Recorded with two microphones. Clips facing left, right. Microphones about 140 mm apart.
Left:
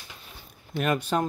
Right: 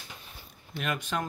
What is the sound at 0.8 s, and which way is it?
Speech, 40° left (ahead or behind).